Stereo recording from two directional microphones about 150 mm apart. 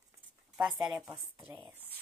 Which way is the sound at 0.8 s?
25° right (ahead or behind).